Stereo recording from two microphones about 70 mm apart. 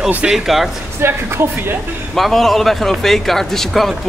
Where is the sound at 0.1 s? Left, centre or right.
Centre.